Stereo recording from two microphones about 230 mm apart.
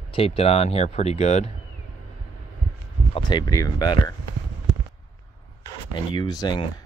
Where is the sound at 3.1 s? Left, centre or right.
Centre.